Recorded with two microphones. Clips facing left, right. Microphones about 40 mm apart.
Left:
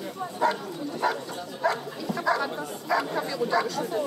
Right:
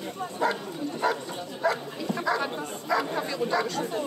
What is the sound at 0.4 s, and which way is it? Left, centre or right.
Speech, centre.